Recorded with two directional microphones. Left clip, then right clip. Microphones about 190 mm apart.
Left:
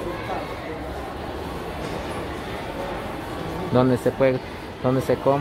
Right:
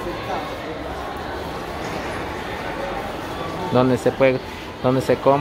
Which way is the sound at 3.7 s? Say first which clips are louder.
Right 2 dB; centre (ahead or behind).